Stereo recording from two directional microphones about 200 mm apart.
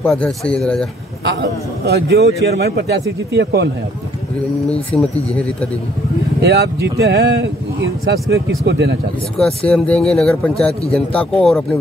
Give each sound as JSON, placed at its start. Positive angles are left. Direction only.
{"t": 0.0, "sound": "speech", "side_deg": 5}
{"t": 1.2, "sound": "a man's voice", "side_deg": -60}
{"t": 4.9, "sound": "a man's voice", "side_deg": 5}
{"t": 6.4, "sound": "a man's voice", "side_deg": -55}
{"t": 9.4, "sound": "speech", "side_deg": 5}